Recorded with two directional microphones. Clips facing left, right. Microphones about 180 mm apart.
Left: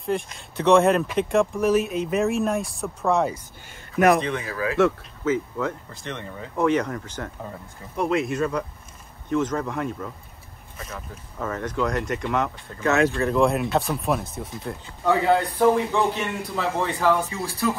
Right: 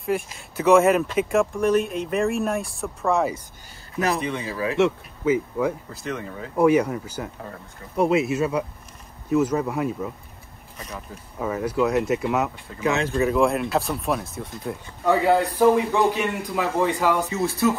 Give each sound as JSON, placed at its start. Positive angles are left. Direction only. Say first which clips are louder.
{"t": 0.0, "sound": "speech", "louder": "right 1 dB", "side_deg": 0}
{"t": 4.4, "sound": "speech", "louder": "even", "side_deg": -25}
{"t": 5.2, "sound": "speech", "louder": "right 3 dB", "side_deg": -10}
{"t": 11.3, "sound": "speech", "louder": "right 3 dB", "side_deg": -10}